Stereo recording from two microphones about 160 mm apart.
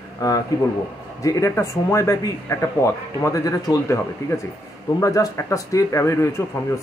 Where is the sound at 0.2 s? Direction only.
20° left (ahead or behind).